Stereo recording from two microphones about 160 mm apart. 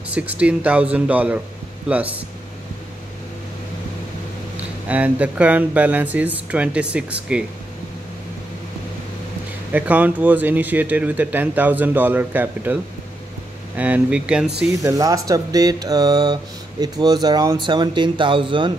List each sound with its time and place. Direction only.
0.1 s speech: 10° right (ahead or behind)
4.8 s speech: 10° right (ahead or behind)
9.7 s speech: 10° right (ahead or behind)
13.7 s speech: 10° right (ahead or behind)
14.7 s speech: 20° right (ahead or behind)